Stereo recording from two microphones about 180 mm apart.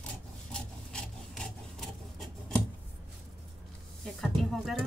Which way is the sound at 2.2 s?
Centre (ahead or behind).